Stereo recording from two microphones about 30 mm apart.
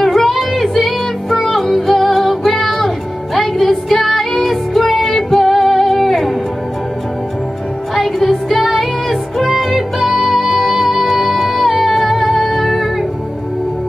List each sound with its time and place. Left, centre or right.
0.0 s child singing: centre
0.3 s music: centre
7.9 s music: centre
10.0 s music: centre
12.4 s female singing: centre